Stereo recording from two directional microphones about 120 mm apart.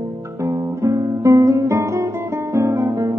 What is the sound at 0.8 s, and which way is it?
Guitar, 25° right (ahead or behind).